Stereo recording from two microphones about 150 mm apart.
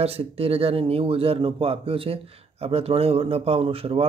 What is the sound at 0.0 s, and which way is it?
A man's voice, 40° right (ahead or behind).